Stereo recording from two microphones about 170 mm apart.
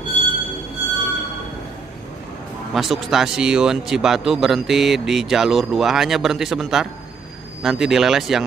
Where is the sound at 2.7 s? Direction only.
Centre (ahead or behind).